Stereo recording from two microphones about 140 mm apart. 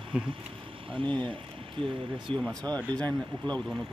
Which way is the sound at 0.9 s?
35° right (ahead or behind).